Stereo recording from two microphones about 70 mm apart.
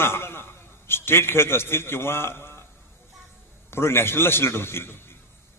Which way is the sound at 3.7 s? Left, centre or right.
Left.